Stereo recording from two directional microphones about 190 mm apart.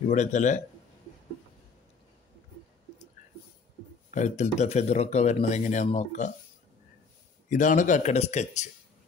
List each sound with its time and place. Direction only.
0.1 s speech: 40° left (ahead or behind)
4.1 s speech: 40° left (ahead or behind)
7.4 s speech: 40° left (ahead or behind)